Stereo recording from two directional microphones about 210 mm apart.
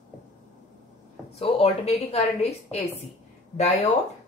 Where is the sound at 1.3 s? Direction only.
30° left (ahead or behind).